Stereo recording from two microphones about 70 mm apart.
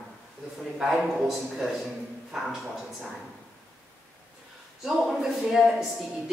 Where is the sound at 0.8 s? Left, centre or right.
Centre.